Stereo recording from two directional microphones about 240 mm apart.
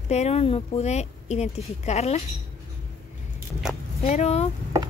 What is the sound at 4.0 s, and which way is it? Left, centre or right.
Speech, left.